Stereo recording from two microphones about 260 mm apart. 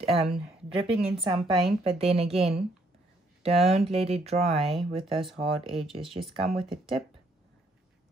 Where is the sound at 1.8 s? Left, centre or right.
Right.